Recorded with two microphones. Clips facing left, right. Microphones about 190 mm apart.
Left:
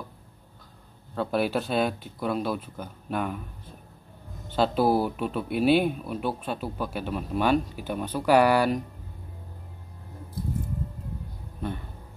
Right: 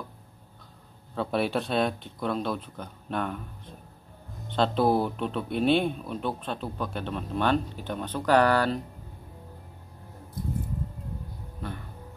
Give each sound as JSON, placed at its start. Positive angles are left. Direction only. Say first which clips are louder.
{"t": 1.1, "sound": "speech", "louder": "left 1 dB", "side_deg": 0}
{"t": 11.6, "sound": "speech", "louder": "left 5 dB", "side_deg": 20}